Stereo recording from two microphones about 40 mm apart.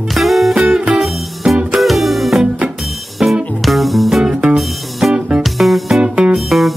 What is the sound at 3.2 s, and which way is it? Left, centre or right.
Music, centre.